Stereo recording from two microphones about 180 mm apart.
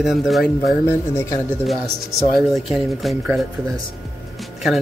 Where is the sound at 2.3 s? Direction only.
Centre (ahead or behind).